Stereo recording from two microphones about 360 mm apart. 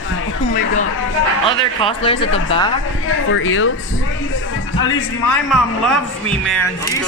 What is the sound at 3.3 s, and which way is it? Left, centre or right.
Speech, left.